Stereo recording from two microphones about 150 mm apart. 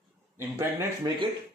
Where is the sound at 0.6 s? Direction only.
15° right (ahead or behind).